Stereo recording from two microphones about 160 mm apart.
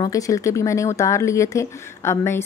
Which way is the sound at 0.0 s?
20° left (ahead or behind).